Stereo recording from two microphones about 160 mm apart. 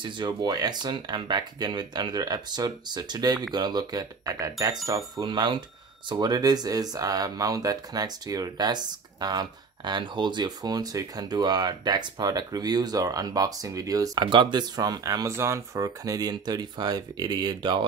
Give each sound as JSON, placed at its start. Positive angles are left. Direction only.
{"t": 0.0, "sound": "speech", "side_deg": -25}